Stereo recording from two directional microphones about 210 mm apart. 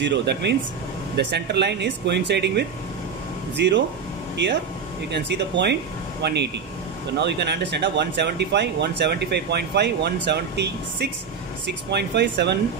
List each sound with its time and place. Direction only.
0.0 s speech: 55° right (ahead or behind)